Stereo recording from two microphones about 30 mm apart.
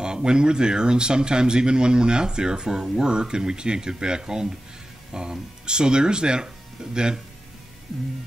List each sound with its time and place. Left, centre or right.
0.0 s speech: right